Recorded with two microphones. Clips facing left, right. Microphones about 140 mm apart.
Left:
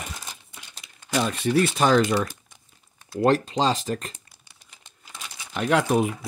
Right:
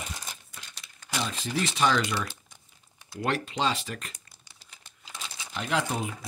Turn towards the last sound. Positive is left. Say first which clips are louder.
# left 8 dB
turn(degrees=65)  # may be behind; listen again after turning